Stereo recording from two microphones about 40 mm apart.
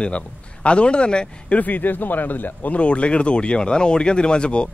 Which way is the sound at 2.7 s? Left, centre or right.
Left.